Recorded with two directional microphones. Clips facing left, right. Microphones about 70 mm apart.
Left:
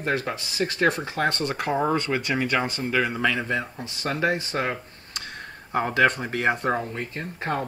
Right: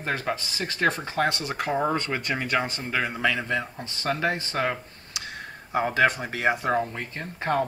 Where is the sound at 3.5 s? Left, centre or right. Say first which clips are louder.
Left 1 dB; centre.